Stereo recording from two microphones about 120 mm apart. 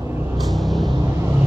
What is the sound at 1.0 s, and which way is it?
Vehicle, 25° right (ahead or behind).